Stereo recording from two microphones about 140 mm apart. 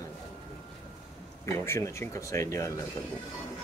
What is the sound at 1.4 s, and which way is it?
Speech, 20° left (ahead or behind).